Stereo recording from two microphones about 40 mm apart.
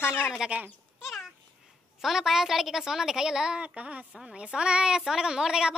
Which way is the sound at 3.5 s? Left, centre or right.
Right.